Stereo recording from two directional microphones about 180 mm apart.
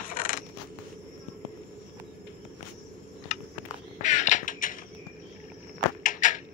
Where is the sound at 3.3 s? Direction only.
40° left (ahead or behind).